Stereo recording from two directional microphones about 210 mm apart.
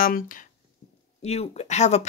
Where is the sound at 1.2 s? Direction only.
30° left (ahead or behind).